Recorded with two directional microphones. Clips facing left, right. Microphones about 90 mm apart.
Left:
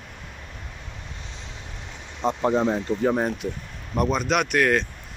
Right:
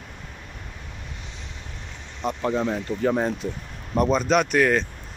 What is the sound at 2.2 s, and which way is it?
Speech, 25° left (ahead or behind).